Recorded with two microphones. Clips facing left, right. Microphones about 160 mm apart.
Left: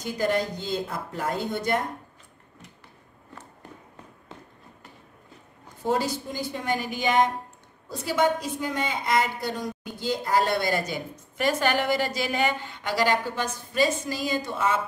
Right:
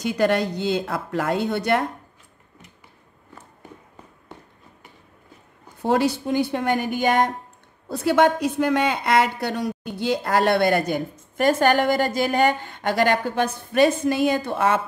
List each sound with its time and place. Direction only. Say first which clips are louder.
0.0 s speech: right 5 dB; 75° right (ahead or behind)
5.8 s a woman's voice: right 5 dB; 65° right (ahead or behind); by 7.2 s 50° right (ahead or behind)
7.9 s a woman's voice: right 6 dB; 65° right (ahead or behind)